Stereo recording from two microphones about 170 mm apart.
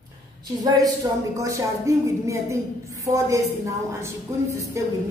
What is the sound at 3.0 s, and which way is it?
A woman's voice, 20° right (ahead or behind).